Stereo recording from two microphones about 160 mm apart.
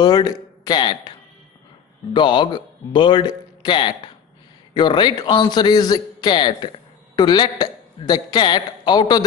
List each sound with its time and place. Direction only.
0.0 s speech: 25° left (ahead or behind)
2.1 s a man's voice: 30° left (ahead or behind)